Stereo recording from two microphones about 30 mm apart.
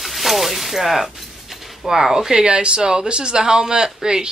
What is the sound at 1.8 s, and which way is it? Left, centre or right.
Speech, centre.